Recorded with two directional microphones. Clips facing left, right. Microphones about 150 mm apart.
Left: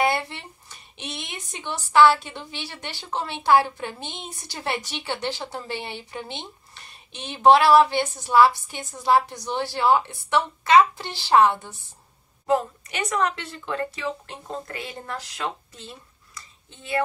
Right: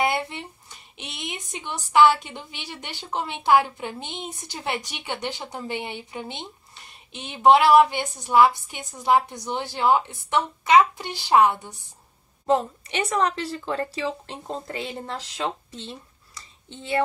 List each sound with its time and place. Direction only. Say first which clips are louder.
0.0 s speech: left 1 dB; 15° right (ahead or behind)
12.4 s speech: right 1 dB; 30° right (ahead or behind)